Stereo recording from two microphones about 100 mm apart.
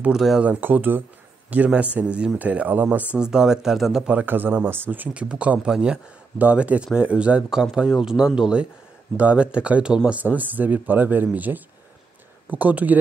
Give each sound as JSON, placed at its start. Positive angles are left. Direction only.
{"t": 0.0, "sound": "speech", "side_deg": -5}
{"t": 0.5, "sound": "speech", "side_deg": -20}
{"t": 3.2, "sound": "speech", "side_deg": -5}
{"t": 4.1, "sound": "speech", "side_deg": -15}